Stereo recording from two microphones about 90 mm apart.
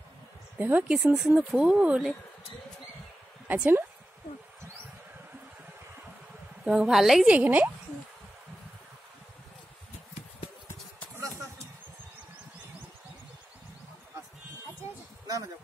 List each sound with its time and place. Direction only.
0.6 s speech: 20° right (ahead or behind)
0.9 s a woman's voice: centre (ahead or behind)
3.4 s speech: 20° right (ahead or behind)
6.6 s a woman's voice: 10° right (ahead or behind)
7.3 s speech: 20° right (ahead or behind)
15.2 s a sound: 40° right (ahead or behind)